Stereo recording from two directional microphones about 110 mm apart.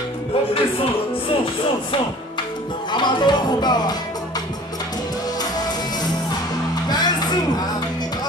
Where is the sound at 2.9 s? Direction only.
40° left (ahead or behind).